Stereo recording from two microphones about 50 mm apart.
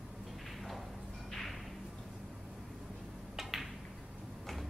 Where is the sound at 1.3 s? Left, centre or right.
Centre.